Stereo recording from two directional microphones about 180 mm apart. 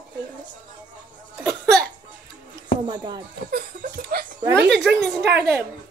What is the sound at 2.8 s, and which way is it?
Speech, 25° right (ahead or behind).